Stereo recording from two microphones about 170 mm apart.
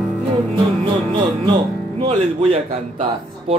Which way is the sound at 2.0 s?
40° right (ahead or behind).